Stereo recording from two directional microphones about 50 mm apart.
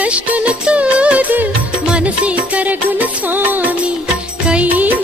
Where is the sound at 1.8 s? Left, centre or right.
Right.